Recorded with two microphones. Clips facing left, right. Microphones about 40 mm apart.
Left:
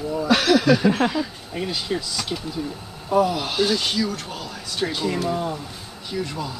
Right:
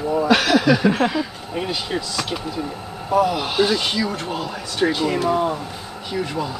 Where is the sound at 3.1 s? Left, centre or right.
Centre.